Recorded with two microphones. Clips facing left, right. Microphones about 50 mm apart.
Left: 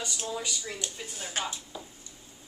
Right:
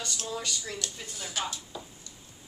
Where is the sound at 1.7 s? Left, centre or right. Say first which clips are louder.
Right 1 dB; centre.